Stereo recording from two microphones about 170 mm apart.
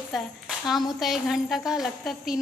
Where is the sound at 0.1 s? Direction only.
Centre (ahead or behind).